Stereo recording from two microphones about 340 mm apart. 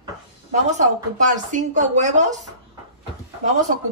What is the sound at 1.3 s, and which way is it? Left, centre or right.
Speech, right.